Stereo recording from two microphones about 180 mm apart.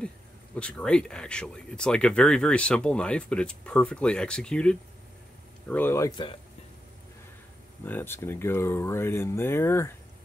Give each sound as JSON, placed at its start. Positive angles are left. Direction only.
{"t": 0.6, "sound": "speech", "side_deg": 5}
{"t": 7.8, "sound": "speech", "side_deg": 10}